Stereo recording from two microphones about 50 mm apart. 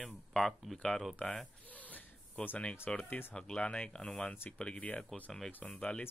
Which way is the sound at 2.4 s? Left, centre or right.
Centre.